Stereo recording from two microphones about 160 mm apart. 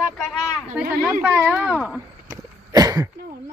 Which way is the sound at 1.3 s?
10° right (ahead or behind).